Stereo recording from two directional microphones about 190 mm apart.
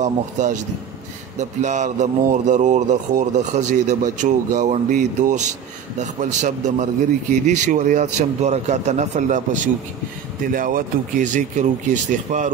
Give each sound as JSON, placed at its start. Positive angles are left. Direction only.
{"t": 0.0, "sound": "speech", "side_deg": -40}